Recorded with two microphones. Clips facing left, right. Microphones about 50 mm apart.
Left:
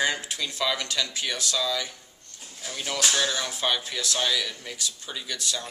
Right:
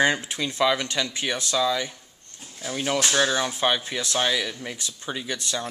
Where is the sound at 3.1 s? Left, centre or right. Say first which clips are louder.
Right 5 dB; right.